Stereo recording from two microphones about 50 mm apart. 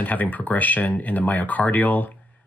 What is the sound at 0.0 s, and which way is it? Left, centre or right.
Speech, left.